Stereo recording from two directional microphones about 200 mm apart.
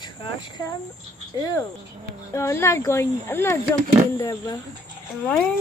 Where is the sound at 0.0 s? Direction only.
20° left (ahead or behind).